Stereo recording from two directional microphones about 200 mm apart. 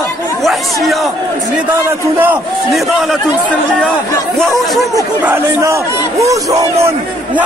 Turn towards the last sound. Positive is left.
turn(degrees=-15)  # may be behind; listen again after turning